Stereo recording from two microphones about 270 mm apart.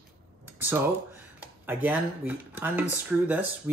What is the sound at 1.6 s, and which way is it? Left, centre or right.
Speech, centre.